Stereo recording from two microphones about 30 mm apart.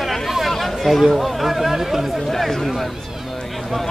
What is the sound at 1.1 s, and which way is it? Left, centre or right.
Speech, centre.